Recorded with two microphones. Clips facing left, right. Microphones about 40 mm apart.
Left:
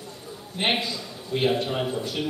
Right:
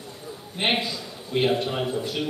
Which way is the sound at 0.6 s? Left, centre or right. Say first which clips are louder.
Right 1 dB; centre.